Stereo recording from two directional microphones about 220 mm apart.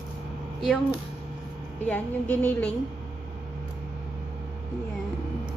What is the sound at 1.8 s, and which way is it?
Speech, 10° left (ahead or behind).